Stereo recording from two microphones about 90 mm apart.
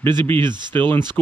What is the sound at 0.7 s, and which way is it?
Speech, 20° left (ahead or behind).